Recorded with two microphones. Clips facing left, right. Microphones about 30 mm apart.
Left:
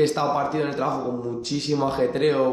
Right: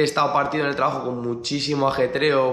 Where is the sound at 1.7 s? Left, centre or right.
Right.